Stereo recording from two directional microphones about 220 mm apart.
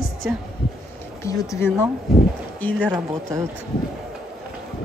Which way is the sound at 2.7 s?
5° right (ahead or behind).